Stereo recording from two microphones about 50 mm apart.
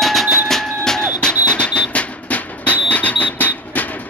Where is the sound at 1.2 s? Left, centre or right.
Left.